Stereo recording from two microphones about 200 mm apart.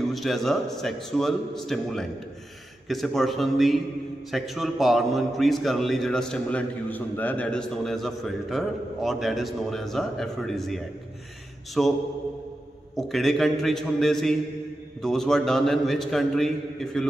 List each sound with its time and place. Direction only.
0.1 s a man's voice: centre (ahead or behind)